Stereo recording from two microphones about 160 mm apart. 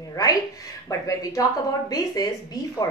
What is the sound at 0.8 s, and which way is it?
A woman's voice, 20° left (ahead or behind).